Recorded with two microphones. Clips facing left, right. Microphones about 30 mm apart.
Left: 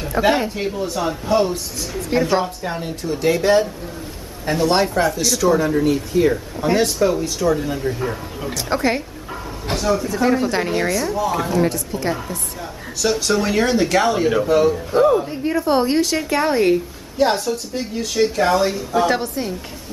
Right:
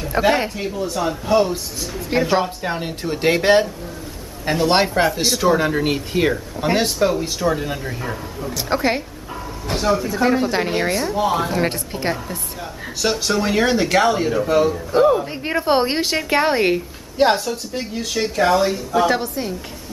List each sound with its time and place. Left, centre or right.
0.1 s a woman's voice: right
0.6 s a woman's voice: centre
2.6 s speech: right
3.0 s a woman's voice: right
4.6 s a woman's voice: right
6.6 s speech: right
8.5 s speech: centre
10.7 s speech: right
11.6 s a woman's voice: right
13.3 s a woman's voice: centre
15.2 s a woman's voice: right
17.5 s a woman's voice: centre